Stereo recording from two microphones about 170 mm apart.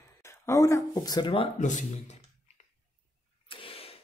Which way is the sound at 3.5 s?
35° left (ahead or behind).